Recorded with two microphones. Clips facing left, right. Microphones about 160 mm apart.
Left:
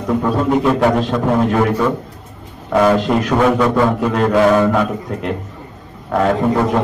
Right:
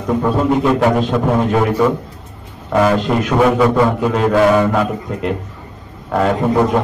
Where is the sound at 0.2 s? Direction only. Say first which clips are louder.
Right 1 dB; centre (ahead or behind).